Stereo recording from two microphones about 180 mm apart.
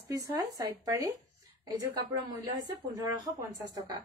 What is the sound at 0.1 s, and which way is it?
A woman's voice, 20° right (ahead or behind).